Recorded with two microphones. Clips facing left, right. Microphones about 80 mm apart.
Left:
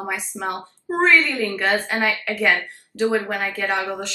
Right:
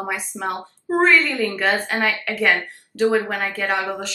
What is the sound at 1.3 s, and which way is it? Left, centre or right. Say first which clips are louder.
Speech: right 1 dB; centre.